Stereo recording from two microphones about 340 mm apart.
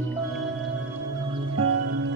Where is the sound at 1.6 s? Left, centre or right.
Right.